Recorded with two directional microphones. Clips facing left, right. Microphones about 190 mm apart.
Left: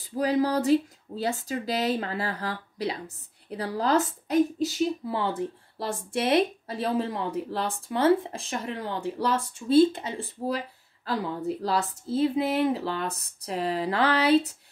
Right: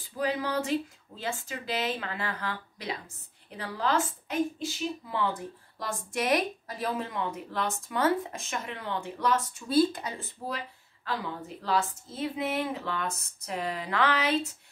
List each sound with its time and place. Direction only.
0.2 s a woman's voice: 40° left (ahead or behind)